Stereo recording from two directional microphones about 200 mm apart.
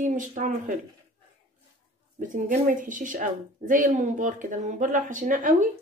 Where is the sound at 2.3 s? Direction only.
40° right (ahead or behind).